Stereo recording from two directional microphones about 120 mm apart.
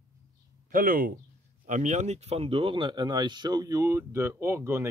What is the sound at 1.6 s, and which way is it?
Speech, 90° right.